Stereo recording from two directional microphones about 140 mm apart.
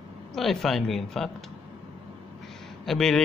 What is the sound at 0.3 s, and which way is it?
Speech, centre (ahead or behind).